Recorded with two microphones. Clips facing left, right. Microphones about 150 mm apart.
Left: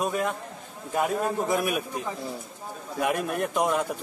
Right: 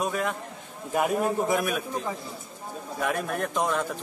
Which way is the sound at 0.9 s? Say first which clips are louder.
Right 1 dB; 10° right (ahead or behind).